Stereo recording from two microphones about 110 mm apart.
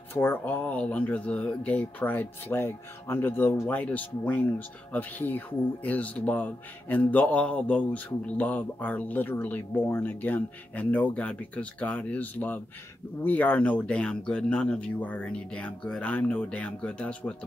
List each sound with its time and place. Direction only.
0.1 s speech: 20° left (ahead or behind)